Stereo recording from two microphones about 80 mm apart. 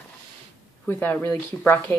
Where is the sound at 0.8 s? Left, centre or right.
Left.